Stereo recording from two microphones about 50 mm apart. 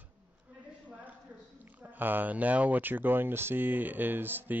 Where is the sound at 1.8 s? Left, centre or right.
Right.